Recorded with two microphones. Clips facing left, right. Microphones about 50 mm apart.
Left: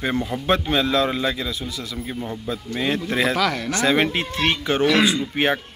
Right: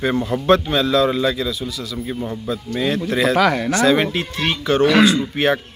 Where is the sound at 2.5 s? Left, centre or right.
Centre.